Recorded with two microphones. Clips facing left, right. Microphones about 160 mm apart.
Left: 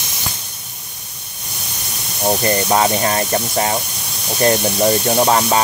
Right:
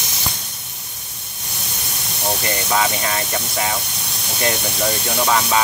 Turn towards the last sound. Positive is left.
turn(degrees=30)  # may be behind; listen again after turning